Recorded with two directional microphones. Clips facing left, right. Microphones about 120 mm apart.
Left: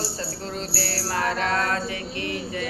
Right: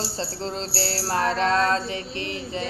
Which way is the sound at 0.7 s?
30° right (ahead or behind).